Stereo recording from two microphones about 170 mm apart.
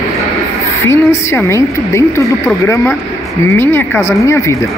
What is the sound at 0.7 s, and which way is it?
A woman's voice, 15° left (ahead or behind).